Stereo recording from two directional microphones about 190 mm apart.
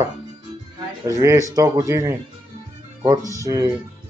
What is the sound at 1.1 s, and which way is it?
Speech, 15° right (ahead or behind).